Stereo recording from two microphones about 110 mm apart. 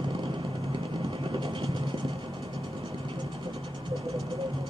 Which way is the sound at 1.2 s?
55° right (ahead or behind).